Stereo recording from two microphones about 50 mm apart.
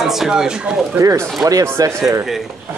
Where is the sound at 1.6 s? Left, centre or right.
Right.